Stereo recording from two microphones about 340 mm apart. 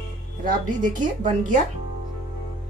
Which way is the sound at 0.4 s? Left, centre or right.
Right.